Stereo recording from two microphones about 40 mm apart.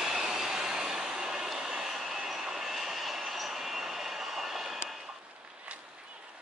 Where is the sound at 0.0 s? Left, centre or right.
Centre.